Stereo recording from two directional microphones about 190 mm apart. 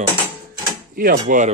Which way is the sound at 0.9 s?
50° right (ahead or behind).